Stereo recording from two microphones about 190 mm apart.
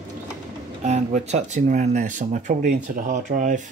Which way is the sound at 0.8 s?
40° right (ahead or behind).